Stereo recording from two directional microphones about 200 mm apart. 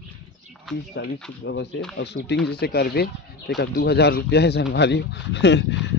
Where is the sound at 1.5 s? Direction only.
60° left (ahead or behind).